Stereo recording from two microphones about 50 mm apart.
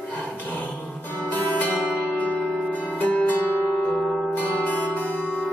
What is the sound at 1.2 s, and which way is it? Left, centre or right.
Music, left.